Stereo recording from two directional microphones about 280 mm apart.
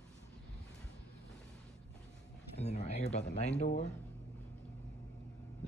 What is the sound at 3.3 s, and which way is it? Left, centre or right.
Speech, left.